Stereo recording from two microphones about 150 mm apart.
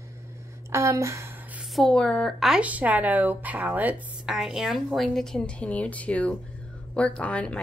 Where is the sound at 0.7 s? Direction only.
20° right (ahead or behind).